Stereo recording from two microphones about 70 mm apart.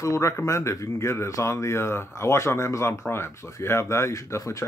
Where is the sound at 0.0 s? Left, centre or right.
Left.